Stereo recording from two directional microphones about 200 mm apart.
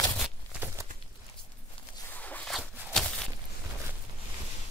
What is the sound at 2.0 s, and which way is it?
Zipper, 10° left (ahead or behind).